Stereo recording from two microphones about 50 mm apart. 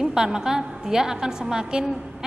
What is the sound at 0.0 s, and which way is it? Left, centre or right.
A woman's voice, centre.